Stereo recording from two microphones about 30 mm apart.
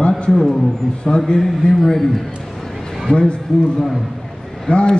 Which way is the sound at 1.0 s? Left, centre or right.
Left.